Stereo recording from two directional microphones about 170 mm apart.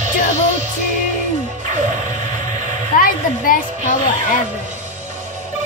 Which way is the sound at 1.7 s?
45° right (ahead or behind).